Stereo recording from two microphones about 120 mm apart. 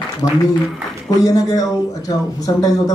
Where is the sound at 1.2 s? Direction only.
30° left (ahead or behind).